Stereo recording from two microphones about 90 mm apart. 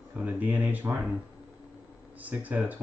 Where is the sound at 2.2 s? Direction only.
20° right (ahead or behind).